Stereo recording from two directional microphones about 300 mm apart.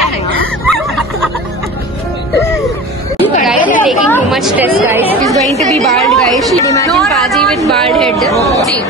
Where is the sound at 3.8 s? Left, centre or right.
Centre.